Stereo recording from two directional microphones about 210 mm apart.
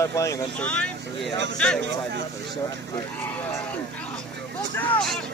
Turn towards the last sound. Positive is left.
turn(degrees=5)  # may be behind; listen again after turning